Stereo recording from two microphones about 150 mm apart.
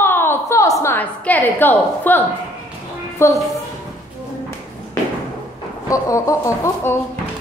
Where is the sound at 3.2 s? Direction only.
15° left (ahead or behind).